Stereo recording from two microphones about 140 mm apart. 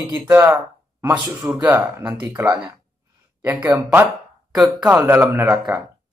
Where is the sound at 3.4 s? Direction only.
10° right (ahead or behind).